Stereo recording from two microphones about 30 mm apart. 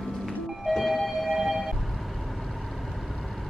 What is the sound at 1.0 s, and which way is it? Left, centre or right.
Music, centre.